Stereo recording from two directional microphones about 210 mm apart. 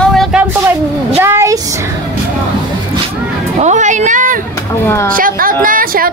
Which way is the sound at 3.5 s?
35° right (ahead or behind).